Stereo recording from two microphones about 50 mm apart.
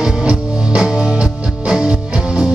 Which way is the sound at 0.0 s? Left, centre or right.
Centre.